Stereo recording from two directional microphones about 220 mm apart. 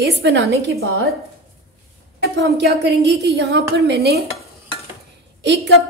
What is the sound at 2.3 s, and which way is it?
A woman's voice, 50° right (ahead or behind).